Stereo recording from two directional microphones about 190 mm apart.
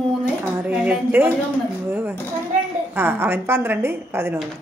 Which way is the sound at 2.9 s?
10° right (ahead or behind).